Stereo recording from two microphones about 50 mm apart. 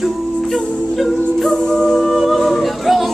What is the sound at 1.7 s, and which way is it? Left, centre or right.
Music, centre.